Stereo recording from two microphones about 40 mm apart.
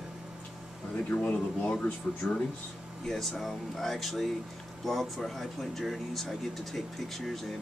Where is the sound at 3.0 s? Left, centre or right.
Centre.